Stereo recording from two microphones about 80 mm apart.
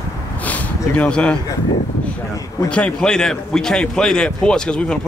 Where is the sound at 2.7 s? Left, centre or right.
Centre.